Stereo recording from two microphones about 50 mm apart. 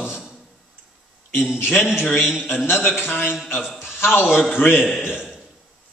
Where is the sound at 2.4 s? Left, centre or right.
Left.